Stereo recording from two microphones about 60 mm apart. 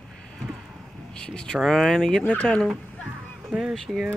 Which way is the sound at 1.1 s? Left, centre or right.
Centre.